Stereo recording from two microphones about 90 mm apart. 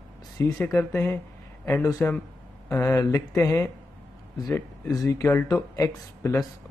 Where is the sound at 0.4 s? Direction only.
30° left (ahead or behind).